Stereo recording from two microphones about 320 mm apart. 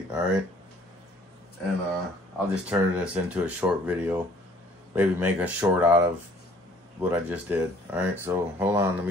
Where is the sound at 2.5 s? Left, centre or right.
Centre.